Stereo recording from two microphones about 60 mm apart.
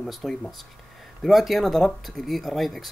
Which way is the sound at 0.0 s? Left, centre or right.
Centre.